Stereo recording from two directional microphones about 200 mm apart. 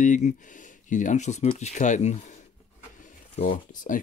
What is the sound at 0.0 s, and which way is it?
Speech, 35° left (ahead or behind).